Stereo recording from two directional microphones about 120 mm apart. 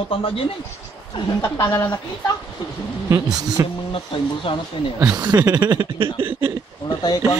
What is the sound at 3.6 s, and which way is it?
Speech, 25° right (ahead or behind).